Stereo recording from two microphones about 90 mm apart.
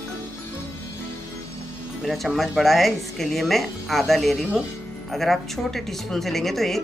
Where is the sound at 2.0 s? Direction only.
Centre (ahead or behind).